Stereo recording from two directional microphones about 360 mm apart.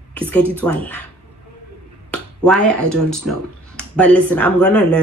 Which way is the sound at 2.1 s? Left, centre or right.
Centre.